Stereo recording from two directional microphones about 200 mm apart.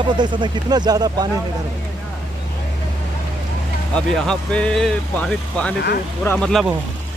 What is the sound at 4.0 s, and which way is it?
Speech, 5° left (ahead or behind).